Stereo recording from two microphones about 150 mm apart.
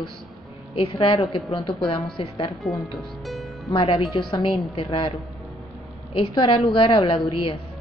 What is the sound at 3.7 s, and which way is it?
A woman's voice, 40° left (ahead or behind).